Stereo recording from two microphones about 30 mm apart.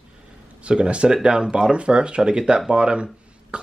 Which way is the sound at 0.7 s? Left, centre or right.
Right.